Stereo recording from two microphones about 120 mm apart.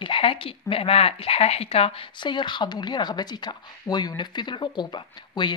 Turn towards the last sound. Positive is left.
turn(degrees=40)  # may be behind; listen again after turning